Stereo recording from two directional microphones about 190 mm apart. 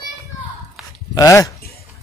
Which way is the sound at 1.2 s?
15° left (ahead or behind).